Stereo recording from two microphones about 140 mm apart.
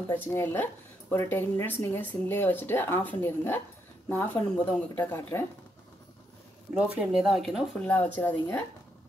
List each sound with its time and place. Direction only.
0.1 s speech: 15° left (ahead or behind)
7.0 s speech: 5° right (ahead or behind)
7.8 s speech: 10° left (ahead or behind)